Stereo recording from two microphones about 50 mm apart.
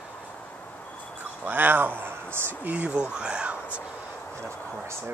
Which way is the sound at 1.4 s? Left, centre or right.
Right.